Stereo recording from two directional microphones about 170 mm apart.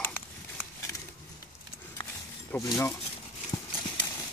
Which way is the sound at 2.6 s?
20° left (ahead or behind).